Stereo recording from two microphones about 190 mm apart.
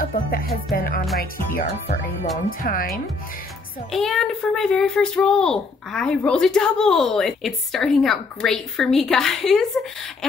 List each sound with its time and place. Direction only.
0.0 s music: 50° left (ahead or behind)
0.7 s speech: 50° left (ahead or behind)
3.9 s a child's voice: centre (ahead or behind)